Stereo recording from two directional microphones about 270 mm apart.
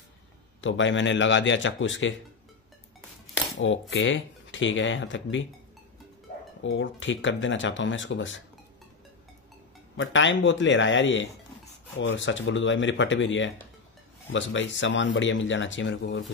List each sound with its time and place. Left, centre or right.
0.6 s speech: left
3.9 s speech: left
6.6 s speech: left
9.9 s speech: left